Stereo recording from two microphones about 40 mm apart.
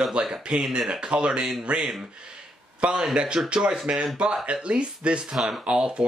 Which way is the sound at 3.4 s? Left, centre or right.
Right.